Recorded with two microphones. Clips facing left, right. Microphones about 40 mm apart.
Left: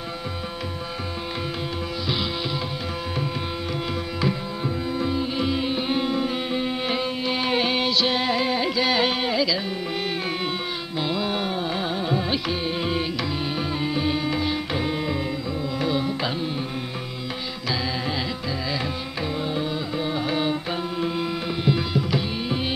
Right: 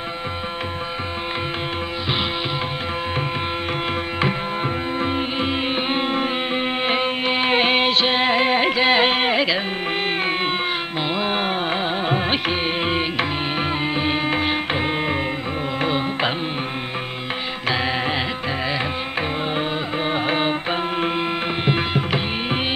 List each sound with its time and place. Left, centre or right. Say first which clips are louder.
5.0 s music: right 1 dB; right
11.1 s music: right 6 dB; right
19.5 s music: right 3 dB; right
21.0 s tabla: right 4 dB; right